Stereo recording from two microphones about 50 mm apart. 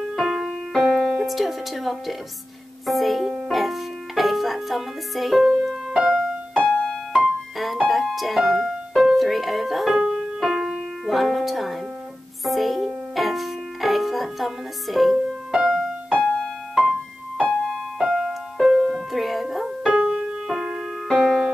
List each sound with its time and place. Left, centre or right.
0.1 s music: centre
1.2 s speech: centre
3.4 s music: centre
6.6 s music: centre
7.1 s music: centre
15.6 s music: centre
16.2 s music: centre
17.9 s music: centre
19.9 s music: centre
21.1 s music: centre